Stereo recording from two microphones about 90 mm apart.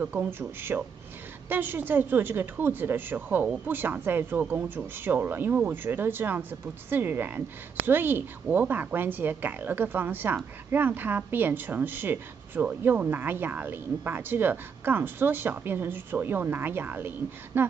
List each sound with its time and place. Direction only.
0.0 s a woman's voice: 20° right (ahead or behind)